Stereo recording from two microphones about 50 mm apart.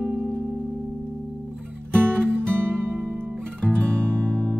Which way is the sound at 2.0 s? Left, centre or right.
Right.